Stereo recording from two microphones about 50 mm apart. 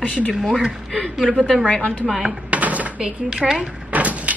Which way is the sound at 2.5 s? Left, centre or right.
Right.